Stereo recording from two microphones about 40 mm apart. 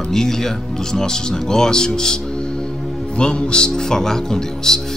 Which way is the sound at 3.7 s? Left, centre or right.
Centre.